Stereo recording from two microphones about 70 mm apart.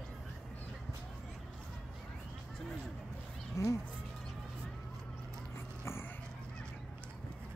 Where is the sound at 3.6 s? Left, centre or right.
Left.